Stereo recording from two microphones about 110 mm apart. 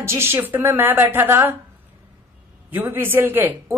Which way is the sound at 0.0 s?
25° right (ahead or behind).